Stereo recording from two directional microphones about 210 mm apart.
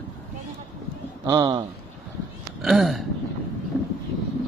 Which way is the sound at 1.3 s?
20° right (ahead or behind).